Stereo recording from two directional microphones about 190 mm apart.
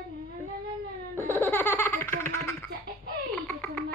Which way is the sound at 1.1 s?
10° left (ahead or behind).